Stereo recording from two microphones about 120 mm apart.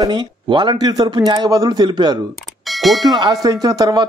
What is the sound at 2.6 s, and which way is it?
Speech, centre (ahead or behind).